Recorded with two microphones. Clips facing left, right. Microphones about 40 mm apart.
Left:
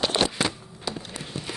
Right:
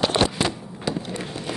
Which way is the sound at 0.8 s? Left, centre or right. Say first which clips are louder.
Right 6 dB; right.